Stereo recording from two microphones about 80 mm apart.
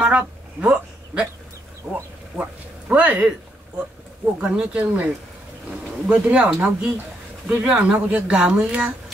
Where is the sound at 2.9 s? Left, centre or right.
Right.